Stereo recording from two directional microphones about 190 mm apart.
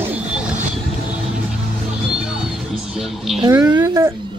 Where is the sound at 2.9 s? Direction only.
Centre (ahead or behind).